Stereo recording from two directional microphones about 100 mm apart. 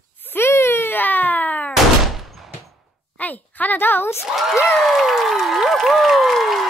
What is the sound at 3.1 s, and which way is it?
A woman's voice, 15° left (ahead or behind).